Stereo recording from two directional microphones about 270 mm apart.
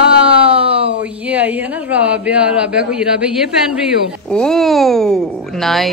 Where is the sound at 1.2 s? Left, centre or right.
Centre.